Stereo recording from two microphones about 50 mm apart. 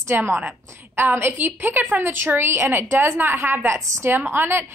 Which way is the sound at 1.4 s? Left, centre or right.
Right.